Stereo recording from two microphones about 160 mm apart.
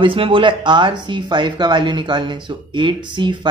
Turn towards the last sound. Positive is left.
turn(degrees=-30)  # may be behind; listen again after turning